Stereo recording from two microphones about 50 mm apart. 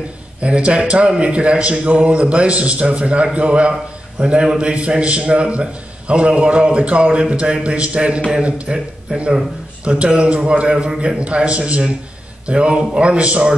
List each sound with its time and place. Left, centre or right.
0.4 s a man's voice: right